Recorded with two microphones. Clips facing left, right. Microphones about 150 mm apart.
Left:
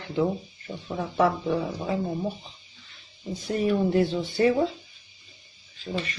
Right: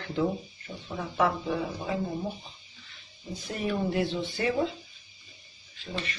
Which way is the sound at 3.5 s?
35° left (ahead or behind).